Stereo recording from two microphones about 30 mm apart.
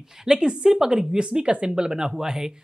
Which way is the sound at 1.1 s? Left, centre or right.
Right.